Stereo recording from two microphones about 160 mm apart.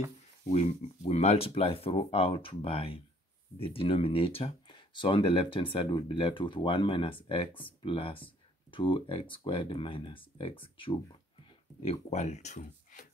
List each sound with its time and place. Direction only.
0.5 s speech: 40° left (ahead or behind)